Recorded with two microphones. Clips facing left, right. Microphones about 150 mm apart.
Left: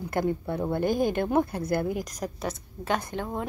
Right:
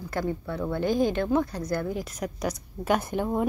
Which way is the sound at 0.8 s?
50° left (ahead or behind).